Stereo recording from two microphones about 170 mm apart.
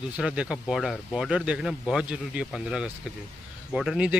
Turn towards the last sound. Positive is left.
turn(degrees=-5)  # may be behind; listen again after turning